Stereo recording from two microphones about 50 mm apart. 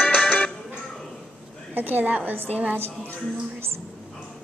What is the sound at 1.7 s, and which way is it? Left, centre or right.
A woman's voice, right.